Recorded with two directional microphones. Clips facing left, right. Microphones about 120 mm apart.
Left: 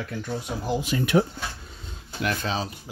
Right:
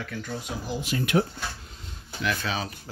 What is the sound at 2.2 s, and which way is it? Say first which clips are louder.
Speech: left 2 dB; 40° left (ahead or behind).